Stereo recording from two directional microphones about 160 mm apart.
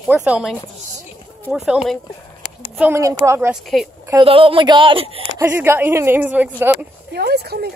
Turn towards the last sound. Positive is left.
turn(degrees=-90)